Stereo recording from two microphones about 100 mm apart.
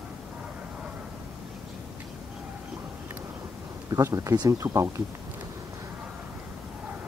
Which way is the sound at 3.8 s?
35° right (ahead or behind).